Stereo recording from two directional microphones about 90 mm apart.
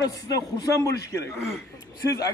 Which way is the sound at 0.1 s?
40° left (ahead or behind).